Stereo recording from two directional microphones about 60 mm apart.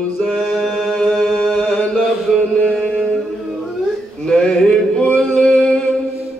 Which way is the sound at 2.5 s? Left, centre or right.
Centre.